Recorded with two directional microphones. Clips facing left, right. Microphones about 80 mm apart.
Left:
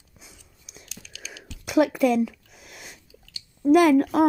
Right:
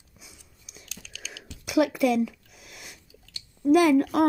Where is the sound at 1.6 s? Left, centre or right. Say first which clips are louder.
Left 2 dB; left.